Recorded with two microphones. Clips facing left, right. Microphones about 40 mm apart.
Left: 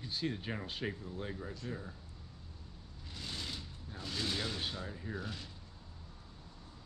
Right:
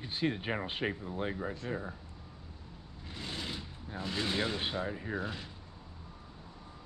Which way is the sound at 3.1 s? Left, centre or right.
Right.